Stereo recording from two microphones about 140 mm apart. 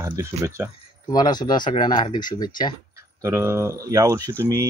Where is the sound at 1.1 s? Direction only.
30° left (ahead or behind).